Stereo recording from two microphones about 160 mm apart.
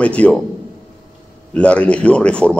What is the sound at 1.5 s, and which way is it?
A man's voice, 10° left (ahead or behind).